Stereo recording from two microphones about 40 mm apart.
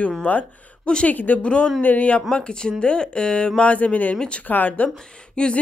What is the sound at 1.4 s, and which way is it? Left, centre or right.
Speech, left.